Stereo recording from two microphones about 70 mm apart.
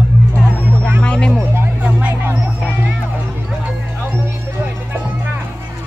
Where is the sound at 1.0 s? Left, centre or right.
Centre.